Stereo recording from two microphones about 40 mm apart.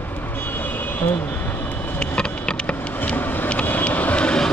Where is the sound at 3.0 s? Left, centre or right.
Left.